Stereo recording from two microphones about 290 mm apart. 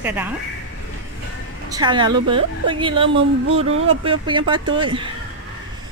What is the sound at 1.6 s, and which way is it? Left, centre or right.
Speech, centre.